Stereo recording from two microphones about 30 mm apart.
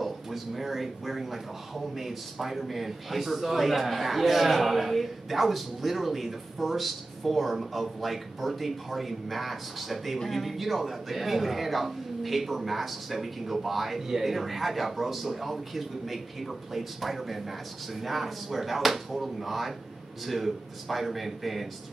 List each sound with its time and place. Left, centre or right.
0.0 s a man's voice: centre
10.1 s speech: centre
10.4 s a man's voice: centre